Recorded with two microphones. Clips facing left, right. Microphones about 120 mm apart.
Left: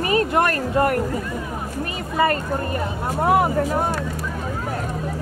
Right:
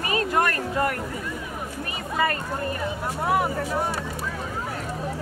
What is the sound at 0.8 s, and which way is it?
Speech, 45° left (ahead or behind).